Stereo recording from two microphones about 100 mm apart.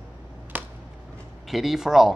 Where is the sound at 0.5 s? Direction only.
20° right (ahead or behind).